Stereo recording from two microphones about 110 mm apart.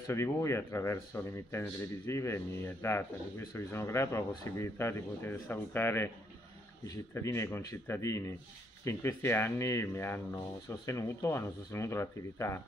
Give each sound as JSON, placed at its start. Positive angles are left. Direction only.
{"t": 0.0, "sound": "speech", "side_deg": 25}
{"t": 7.2, "sound": "speech", "side_deg": 25}